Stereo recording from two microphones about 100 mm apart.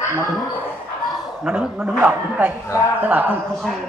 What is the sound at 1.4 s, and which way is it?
Speech, 15° right (ahead or behind).